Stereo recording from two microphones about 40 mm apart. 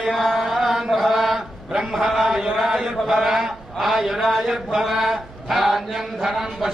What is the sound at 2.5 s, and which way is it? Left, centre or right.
A man's voice, centre.